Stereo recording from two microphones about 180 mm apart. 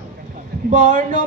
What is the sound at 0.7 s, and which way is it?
Speech, 45° right (ahead or behind).